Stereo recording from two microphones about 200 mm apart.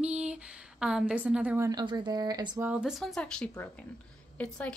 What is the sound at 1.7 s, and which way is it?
Speech, 20° right (ahead or behind).